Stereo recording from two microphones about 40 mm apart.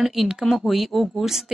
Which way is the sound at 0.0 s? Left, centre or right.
Centre.